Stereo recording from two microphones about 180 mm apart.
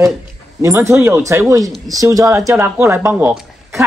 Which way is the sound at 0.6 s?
15° right (ahead or behind).